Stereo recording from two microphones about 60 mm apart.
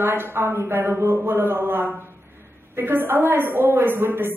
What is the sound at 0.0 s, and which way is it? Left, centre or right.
A woman's voice, right.